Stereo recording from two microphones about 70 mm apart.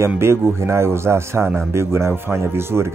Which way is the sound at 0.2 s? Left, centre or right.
Right.